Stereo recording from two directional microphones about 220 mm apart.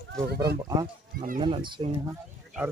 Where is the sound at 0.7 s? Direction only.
20° right (ahead or behind).